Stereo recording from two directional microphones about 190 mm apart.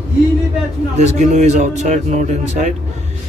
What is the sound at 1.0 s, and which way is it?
Speech, 35° right (ahead or behind).